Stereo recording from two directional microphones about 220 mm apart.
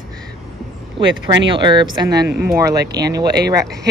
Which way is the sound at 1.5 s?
20° right (ahead or behind).